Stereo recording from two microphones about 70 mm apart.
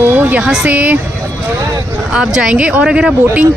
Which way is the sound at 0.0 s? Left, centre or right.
Right.